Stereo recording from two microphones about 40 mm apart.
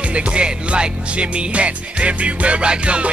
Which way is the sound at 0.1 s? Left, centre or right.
Right.